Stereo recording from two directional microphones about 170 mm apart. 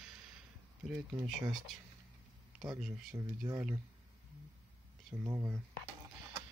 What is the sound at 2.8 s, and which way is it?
Speech, 5° right (ahead or behind).